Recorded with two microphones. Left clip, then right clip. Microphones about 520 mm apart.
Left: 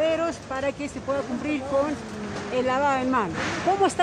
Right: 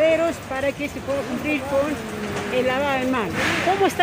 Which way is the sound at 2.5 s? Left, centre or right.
Left.